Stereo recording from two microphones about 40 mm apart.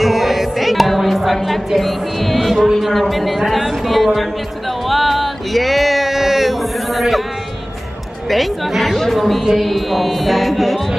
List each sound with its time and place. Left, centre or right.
0.0 s music: centre
8.3 s a woman's voice: centre
9.4 s music: centre